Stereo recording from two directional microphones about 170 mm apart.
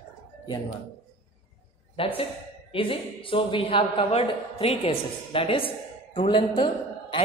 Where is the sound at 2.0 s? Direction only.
35° left (ahead or behind).